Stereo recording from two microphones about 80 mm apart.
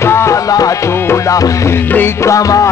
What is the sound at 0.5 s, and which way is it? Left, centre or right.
Music, left.